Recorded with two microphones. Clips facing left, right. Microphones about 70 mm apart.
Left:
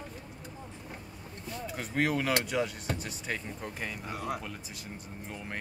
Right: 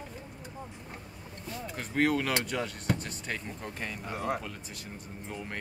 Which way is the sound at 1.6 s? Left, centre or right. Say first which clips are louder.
Right 2 dB; centre.